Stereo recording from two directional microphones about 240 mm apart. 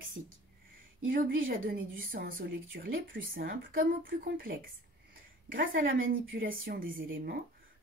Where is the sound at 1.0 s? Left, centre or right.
Right.